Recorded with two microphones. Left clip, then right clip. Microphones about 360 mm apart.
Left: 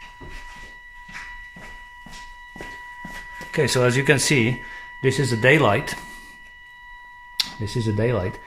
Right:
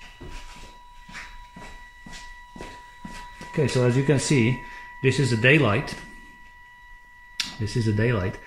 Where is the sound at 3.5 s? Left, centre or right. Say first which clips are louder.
Left 4 dB; left.